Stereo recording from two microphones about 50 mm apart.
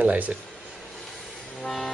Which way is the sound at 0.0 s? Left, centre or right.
Right.